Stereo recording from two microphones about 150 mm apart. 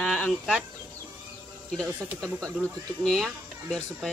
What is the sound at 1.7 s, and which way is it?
Speech, 5° left (ahead or behind).